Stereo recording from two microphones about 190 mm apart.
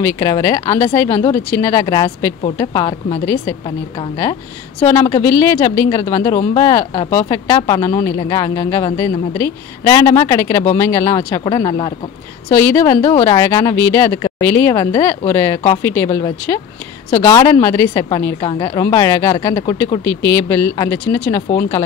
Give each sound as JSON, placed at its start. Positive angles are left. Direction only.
{"t": 0.2, "sound": "a woman's voice", "side_deg": 25}
{"t": 1.3, "sound": "a woman's voice", "side_deg": 15}
{"t": 4.8, "sound": "a woman's voice", "side_deg": 15}
{"t": 12.4, "sound": "a woman's voice", "side_deg": 10}